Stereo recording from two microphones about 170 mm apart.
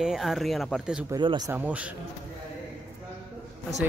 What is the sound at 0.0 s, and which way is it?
Speech, centre (ahead or behind).